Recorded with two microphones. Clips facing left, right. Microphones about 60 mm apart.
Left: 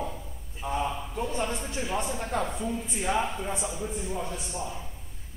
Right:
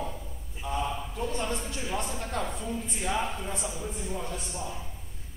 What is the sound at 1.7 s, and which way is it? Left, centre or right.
A man's voice, centre.